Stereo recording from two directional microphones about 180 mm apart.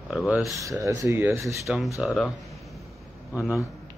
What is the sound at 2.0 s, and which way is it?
Speech, centre (ahead or behind).